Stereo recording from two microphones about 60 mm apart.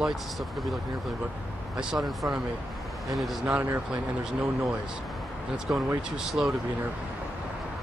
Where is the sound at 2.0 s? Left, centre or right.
Centre.